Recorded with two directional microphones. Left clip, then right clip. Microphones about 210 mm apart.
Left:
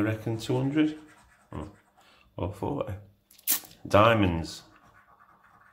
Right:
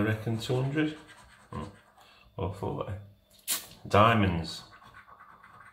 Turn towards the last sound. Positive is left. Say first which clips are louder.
# left 3 dB
turn(degrees=45)  # may be behind; listen again after turning